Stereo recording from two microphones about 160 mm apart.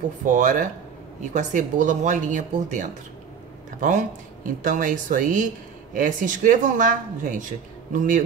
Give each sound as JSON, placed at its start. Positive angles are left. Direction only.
{"t": 0.3, "sound": "speech", "side_deg": -50}